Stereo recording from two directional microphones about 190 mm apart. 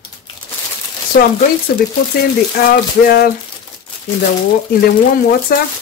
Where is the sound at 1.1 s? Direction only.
55° left (ahead or behind).